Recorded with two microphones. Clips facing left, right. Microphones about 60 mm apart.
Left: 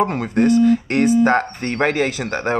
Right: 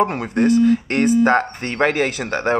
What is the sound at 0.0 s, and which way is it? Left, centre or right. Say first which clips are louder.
Speech: even; right.